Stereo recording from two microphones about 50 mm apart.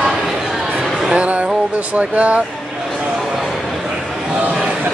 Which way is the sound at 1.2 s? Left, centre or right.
Right.